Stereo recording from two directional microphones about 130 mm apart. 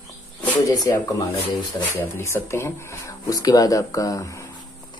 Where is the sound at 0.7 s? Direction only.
25° left (ahead or behind).